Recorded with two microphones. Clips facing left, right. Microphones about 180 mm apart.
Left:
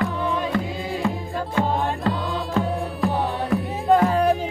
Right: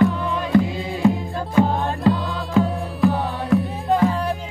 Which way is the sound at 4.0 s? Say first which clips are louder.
Left 2 dB; 60° left (ahead or behind).